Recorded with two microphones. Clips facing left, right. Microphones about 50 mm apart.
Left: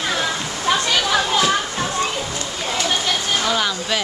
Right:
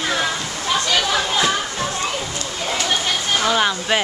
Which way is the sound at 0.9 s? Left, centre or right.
Centre.